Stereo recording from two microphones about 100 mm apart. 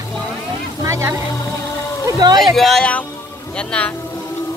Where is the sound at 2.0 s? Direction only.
40° right (ahead or behind).